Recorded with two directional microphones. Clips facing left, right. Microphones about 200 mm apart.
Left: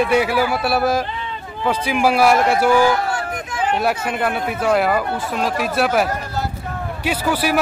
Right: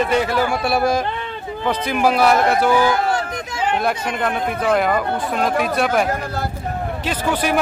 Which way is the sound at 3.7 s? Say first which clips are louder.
Left 2 dB; 5° left (ahead or behind).